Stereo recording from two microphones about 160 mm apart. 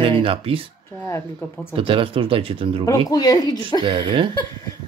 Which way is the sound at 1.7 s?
35° right (ahead or behind).